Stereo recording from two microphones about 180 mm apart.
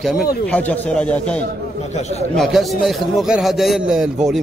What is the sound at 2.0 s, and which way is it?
Speech, 35° left (ahead or behind).